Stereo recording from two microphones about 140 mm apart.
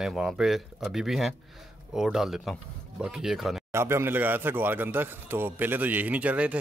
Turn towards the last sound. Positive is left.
turn(degrees=-10)  # may be behind; listen again after turning